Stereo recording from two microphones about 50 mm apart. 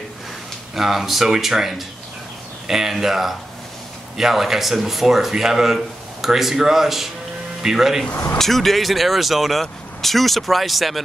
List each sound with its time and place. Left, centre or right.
0.7 s speech: centre
8.4 s speech: centre